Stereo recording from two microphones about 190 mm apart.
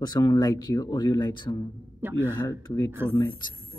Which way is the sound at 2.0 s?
10° right (ahead or behind).